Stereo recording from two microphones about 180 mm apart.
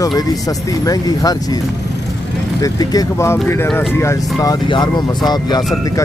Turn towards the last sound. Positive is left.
turn(degrees=25)  # may be behind; listen again after turning